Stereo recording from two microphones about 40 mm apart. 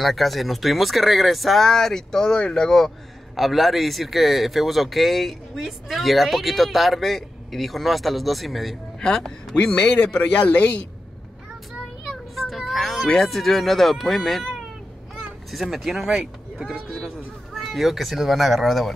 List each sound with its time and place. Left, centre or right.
0.0 s speech: centre
3.3 s speech: centre
9.0 s speech: centre; by 10.3 s left
10.3 s a man's voice: left
12.4 s child singing: centre
13.2 s speech: centre
15.5 s speech: centre
16.7 s speech: centre